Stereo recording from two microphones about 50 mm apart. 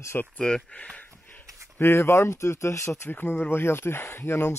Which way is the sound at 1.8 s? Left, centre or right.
Left.